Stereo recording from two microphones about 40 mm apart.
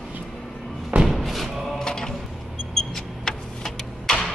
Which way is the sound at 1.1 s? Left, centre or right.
Centre.